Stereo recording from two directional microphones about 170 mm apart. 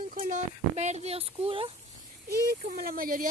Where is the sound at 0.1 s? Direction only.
45° right (ahead or behind).